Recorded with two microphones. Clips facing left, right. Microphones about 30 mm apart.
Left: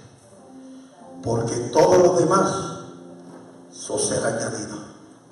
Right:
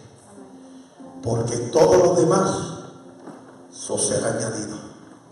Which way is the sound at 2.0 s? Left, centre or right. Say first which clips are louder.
Even; left.